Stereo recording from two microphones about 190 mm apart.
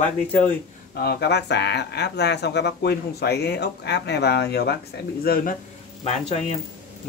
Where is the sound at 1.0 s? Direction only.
55° left (ahead or behind).